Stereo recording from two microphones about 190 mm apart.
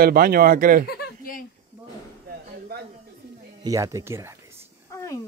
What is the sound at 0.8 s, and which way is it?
Chuckle, 50° left (ahead or behind).